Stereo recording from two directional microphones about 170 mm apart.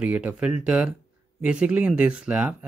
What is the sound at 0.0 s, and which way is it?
Speech, 10° right (ahead or behind).